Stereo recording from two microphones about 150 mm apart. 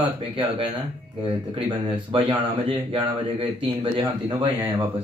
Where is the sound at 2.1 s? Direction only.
35° right (ahead or behind).